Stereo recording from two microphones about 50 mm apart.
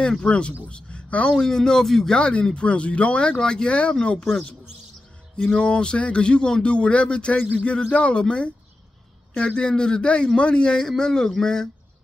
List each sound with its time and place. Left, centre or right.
0.2 s speech: left
1.3 s a man's voice: centre
2.1 s speech: centre
5.5 s a man's voice: centre